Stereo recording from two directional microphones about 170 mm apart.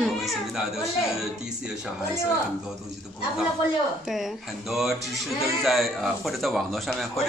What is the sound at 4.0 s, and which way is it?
Speech, centre (ahead or behind).